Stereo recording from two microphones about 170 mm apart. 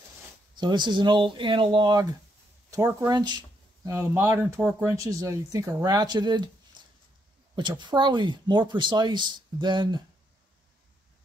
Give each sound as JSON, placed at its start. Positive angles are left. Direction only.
{"t": 0.6, "sound": "speech", "side_deg": -25}
{"t": 6.8, "sound": "a sound", "side_deg": -25}
{"t": 7.5, "sound": "speech", "side_deg": -25}